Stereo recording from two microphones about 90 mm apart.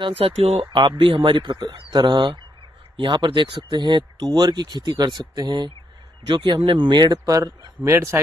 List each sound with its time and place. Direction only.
0.0 s speech: 90° right; by 7.7 s 45° right (ahead or behind)
7.8 s speech: 30° right (ahead or behind)